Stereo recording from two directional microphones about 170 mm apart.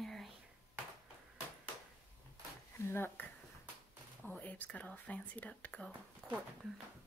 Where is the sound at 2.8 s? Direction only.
15° left (ahead or behind).